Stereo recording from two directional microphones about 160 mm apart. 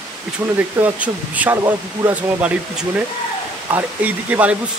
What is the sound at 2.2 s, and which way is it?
Speech, 10° right (ahead or behind).